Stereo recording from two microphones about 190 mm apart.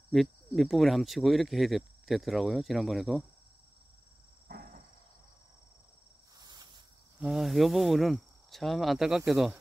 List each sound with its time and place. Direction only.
0.1 s speech: centre (ahead or behind)
4.5 s a sound: 50° right (ahead or behind)
6.4 s insect: 20° right (ahead or behind)
7.2 s speech: centre (ahead or behind)